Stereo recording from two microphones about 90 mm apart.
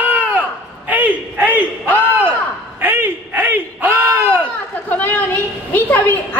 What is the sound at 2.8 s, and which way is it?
Speech, 25° right (ahead or behind).